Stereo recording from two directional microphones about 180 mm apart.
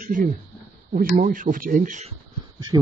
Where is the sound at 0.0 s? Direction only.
45° right (ahead or behind).